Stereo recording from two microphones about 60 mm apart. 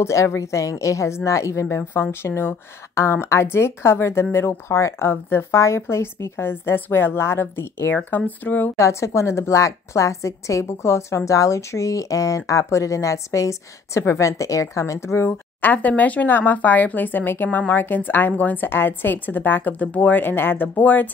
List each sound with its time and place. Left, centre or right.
0.0 s a woman's voice: left
8.7 s a woman's voice: left
15.6 s a woman's voice: left